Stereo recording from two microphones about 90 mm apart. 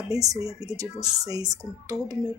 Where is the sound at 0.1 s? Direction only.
40° right (ahead or behind).